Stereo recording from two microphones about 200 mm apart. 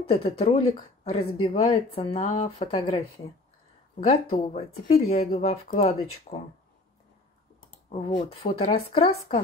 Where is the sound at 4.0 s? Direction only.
30° left (ahead or behind).